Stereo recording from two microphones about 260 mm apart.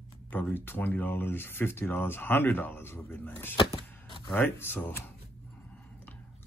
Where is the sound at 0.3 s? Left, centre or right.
Centre.